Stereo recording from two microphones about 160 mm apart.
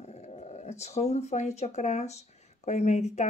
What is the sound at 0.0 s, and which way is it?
Speech, 45° left (ahead or behind).